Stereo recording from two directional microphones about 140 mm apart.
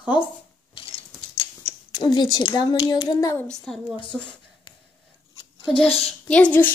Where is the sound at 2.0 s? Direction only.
30° left (ahead or behind).